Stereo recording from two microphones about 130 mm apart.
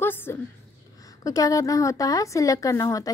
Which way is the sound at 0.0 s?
15° left (ahead or behind).